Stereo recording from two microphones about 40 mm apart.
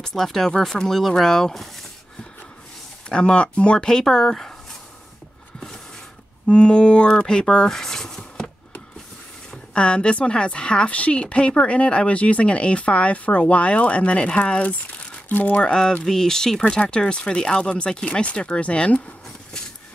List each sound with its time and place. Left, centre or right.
0.0 s speech: centre
3.1 s speech: left
4.0 s speech: centre
6.4 s speech: left
7.8 s a sound: centre
9.5 s a woman's voice: left
15.2 s speech: left
16.1 s speech: centre
16.9 s speech: left